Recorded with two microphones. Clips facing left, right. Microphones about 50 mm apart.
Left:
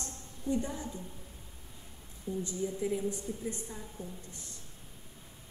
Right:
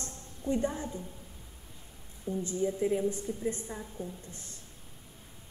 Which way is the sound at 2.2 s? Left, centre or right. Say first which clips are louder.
Right 4 dB; right.